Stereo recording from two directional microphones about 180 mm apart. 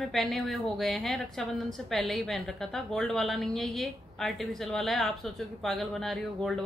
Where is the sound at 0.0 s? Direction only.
Centre (ahead or behind).